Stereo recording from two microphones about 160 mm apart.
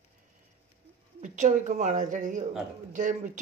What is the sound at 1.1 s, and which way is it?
Speech, 50° right (ahead or behind).